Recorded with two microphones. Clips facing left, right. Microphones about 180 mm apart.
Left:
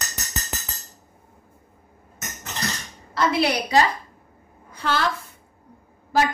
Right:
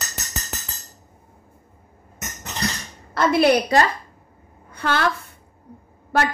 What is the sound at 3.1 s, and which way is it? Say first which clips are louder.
Speech: right 5 dB; 50° right (ahead or behind).